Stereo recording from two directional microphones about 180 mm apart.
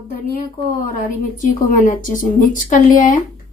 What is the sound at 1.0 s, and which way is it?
Speech, 50° left (ahead or behind).